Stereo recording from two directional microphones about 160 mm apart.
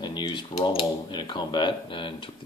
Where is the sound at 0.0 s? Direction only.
30° left (ahead or behind).